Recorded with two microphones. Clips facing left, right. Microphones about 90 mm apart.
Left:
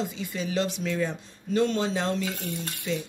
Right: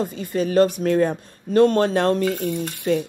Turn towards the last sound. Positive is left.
turn(degrees=-55)  # may be behind; listen again after turning